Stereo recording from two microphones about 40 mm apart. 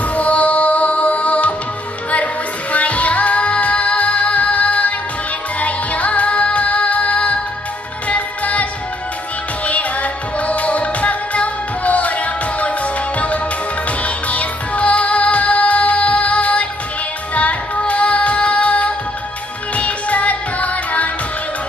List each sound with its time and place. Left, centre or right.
0.1 s music: left
2.7 s music: left
10.4 s music: left